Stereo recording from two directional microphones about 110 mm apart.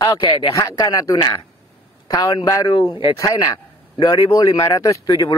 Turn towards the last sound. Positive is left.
turn(degrees=30)  # may be behind; listen again after turning